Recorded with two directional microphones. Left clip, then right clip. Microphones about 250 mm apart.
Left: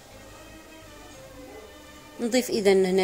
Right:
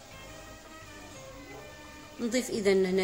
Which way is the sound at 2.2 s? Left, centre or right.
Centre.